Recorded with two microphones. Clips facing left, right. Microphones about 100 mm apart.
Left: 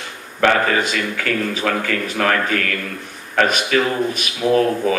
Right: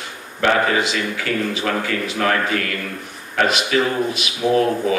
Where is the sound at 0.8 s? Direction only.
50° left (ahead or behind).